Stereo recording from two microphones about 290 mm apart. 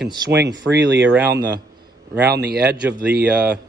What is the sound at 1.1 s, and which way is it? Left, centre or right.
Speech, centre.